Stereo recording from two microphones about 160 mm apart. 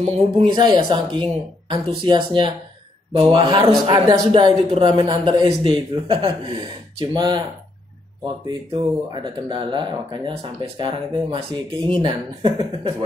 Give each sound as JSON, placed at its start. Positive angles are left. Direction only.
{"t": 0.5, "sound": "speech", "side_deg": -25}
{"t": 8.5, "sound": "speech", "side_deg": -30}